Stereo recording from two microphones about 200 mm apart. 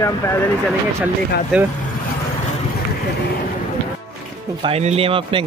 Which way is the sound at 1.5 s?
Centre (ahead or behind).